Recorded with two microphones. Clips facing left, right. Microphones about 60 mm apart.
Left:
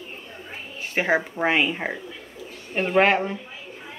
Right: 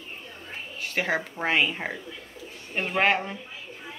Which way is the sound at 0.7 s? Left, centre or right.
Left.